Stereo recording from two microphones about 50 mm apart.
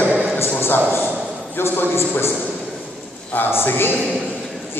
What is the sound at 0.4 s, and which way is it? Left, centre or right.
A man's voice, left.